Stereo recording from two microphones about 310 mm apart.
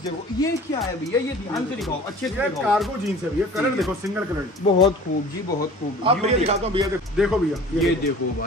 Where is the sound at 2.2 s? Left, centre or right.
Centre.